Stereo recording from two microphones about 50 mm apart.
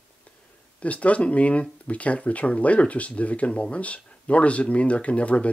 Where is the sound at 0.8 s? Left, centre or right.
Left.